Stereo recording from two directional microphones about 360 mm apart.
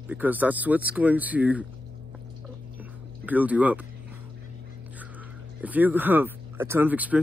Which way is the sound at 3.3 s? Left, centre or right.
Centre.